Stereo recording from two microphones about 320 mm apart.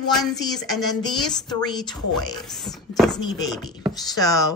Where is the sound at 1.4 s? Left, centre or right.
Centre.